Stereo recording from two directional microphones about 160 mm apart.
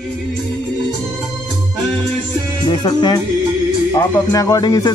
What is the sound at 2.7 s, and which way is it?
Speech, 25° left (ahead or behind).